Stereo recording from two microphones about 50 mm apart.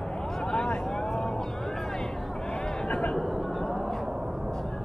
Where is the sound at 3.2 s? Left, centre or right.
Centre.